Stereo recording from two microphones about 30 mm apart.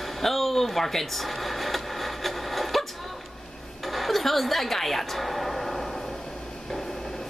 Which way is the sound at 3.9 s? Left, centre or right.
Centre.